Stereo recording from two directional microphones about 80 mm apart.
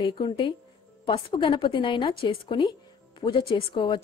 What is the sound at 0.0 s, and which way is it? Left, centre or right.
A woman's voice, left.